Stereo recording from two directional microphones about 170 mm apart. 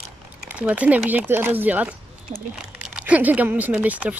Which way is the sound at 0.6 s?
10° right (ahead or behind).